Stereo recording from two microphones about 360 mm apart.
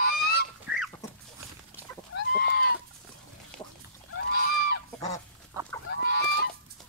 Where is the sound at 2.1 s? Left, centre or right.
Left.